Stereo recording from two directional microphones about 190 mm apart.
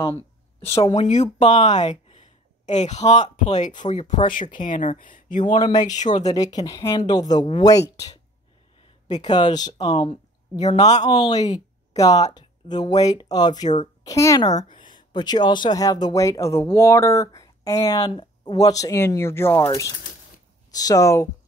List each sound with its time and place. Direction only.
0.7 s speech: 30° left (ahead or behind)
5.6 s speech: 20° left (ahead or behind)
5.9 s speech: 40° left (ahead or behind)
6.3 s speech: 20° left (ahead or behind)
9.2 s speech: 20° left (ahead or behind)
9.8 s speech: 30° left (ahead or behind)
11.1 s speech: 20° left (ahead or behind)
14.5 s speech: 35° left (ahead or behind)
14.8 s speech: 25° left (ahead or behind)